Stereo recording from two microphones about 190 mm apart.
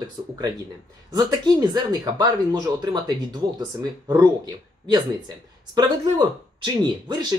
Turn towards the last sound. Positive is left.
turn(degrees=-25)  # may be behind; listen again after turning